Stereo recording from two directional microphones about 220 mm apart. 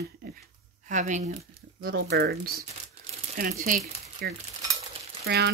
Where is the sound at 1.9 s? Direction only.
45° right (ahead or behind).